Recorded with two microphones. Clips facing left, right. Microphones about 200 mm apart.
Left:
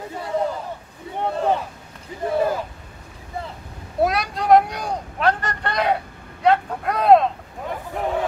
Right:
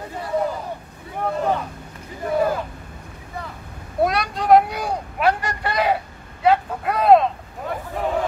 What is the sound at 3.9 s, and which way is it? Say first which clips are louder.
Vehicle: even; centre (ahead or behind).